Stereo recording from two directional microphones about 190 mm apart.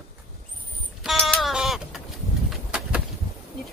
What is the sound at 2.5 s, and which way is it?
Bird, 5° right (ahead or behind).